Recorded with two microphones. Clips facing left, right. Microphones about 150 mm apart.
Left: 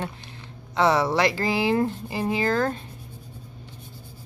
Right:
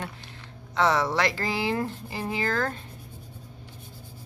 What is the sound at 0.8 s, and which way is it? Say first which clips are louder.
Speech: left 3 dB; 10° left (ahead or behind).